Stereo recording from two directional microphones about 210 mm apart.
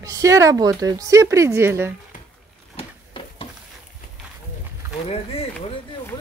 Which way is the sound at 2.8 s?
25° left (ahead or behind).